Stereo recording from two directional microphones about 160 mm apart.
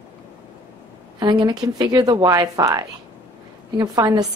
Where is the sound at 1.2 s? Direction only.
25° right (ahead or behind).